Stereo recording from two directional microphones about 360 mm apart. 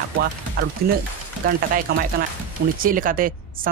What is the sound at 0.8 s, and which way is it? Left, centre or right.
Speech, right.